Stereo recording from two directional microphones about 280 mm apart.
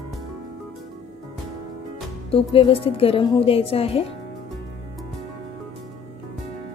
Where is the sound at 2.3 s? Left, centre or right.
Centre.